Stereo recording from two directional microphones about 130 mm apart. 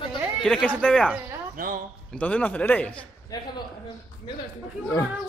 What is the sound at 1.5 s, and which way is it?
Speech, 90° right.